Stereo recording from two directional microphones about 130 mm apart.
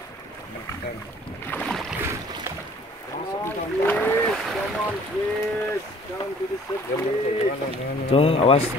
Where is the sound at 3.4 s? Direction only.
15° left (ahead or behind).